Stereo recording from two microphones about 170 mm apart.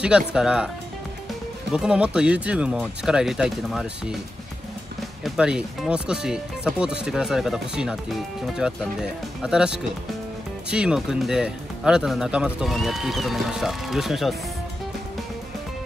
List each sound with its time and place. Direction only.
0.3 s speech: 5° right (ahead or behind)
1.7 s speech: 5° right (ahead or behind)
5.2 s speech: 5° right (ahead or behind)